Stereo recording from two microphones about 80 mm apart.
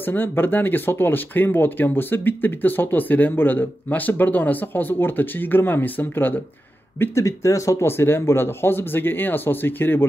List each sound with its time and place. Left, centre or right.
0.0 s speech: left
7.0 s speech: left